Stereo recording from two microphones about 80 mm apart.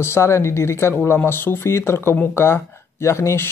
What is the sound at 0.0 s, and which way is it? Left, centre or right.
Speech, left.